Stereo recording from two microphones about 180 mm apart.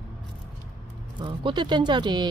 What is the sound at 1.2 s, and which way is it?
Speech, 25° right (ahead or behind).